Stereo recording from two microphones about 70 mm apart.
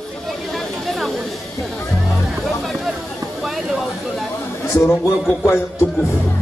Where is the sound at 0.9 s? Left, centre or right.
Centre.